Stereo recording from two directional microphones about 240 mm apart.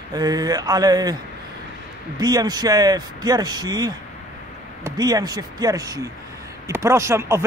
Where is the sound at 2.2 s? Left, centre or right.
Centre.